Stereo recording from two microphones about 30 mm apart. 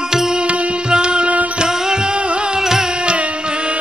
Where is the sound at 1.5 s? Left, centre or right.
Right.